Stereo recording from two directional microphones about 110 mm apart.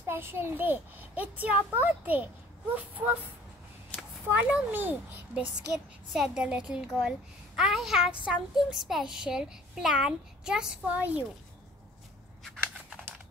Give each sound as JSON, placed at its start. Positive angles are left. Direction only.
{"t": 0.0, "sound": "a child's voice", "side_deg": -20}
{"t": 4.3, "sound": "a child's voice", "side_deg": -15}